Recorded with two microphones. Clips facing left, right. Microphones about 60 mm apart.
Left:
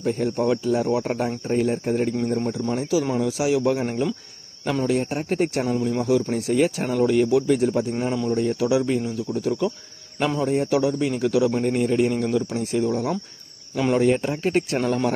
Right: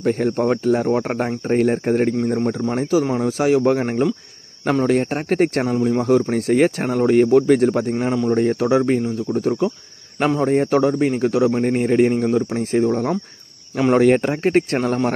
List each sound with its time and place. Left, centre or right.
0.0 s a man's voice: right
12.5 s a man's voice: right
13.9 s speech: right